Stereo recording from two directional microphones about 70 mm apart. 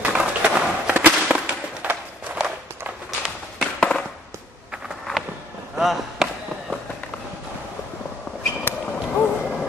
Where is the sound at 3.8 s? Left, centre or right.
Centre.